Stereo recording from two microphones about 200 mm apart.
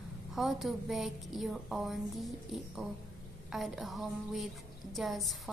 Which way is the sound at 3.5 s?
Centre (ahead or behind).